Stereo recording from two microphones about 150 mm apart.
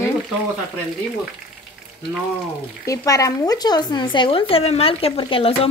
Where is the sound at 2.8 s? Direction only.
20° left (ahead or behind).